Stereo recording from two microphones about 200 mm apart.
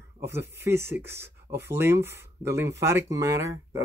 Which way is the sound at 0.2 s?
10° right (ahead or behind).